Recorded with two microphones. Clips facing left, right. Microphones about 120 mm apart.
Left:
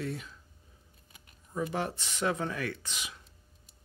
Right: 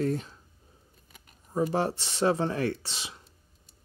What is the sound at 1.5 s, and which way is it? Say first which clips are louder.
Speech: right 6 dB; 35° right (ahead or behind).